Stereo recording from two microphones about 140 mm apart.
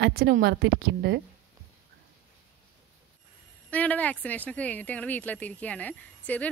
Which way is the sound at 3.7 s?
10° left (ahead or behind).